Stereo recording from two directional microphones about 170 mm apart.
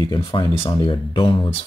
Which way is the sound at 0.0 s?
25° left (ahead or behind).